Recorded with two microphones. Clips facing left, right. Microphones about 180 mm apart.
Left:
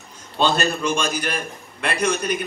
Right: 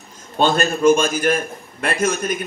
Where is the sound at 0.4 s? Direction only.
50° right (ahead or behind).